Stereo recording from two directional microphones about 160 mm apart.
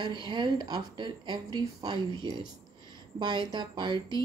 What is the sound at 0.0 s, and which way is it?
Speech, 30° right (ahead or behind).